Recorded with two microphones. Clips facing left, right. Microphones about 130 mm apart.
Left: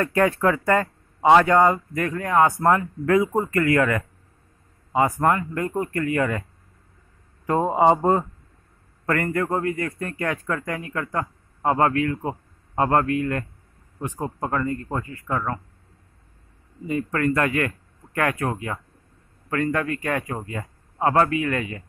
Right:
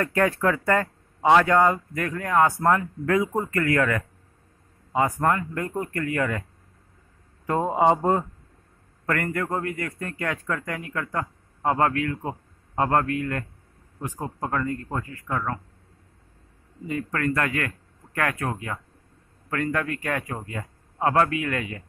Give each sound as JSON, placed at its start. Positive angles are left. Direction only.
{"t": 0.0, "sound": "speech", "side_deg": 15}
{"t": 3.2, "sound": "speech", "side_deg": 25}
{"t": 7.4, "sound": "a man's voice", "side_deg": 15}
{"t": 9.3, "sound": "a man's voice", "side_deg": 15}
{"t": 13.9, "sound": "speech", "side_deg": 25}
{"t": 17.1, "sound": "speech", "side_deg": 20}
{"t": 19.7, "sound": "a man's voice", "side_deg": 5}